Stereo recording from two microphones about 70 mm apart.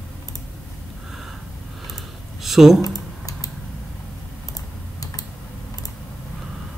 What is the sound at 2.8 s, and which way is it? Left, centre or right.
Typing, left.